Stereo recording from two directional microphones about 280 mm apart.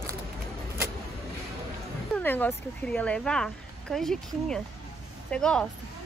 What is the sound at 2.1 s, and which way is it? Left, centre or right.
Speech, centre.